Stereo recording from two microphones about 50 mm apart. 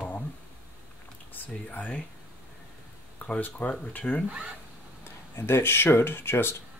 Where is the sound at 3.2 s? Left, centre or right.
Left.